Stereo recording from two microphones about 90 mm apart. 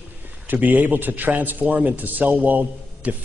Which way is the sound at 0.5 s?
20° right (ahead or behind).